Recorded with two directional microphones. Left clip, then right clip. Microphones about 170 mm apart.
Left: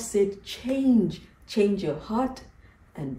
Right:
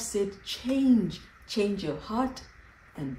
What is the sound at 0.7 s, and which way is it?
Speech, 30° right (ahead or behind).